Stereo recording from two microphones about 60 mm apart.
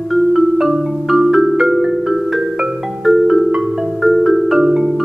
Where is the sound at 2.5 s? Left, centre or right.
Centre.